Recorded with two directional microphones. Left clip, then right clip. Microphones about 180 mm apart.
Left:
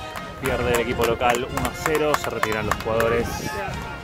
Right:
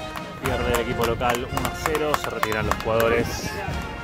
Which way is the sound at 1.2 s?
5° left (ahead or behind).